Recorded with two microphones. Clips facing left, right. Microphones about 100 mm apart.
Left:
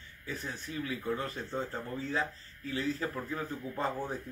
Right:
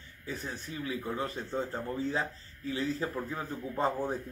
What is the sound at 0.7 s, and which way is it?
Speech, 25° right (ahead or behind).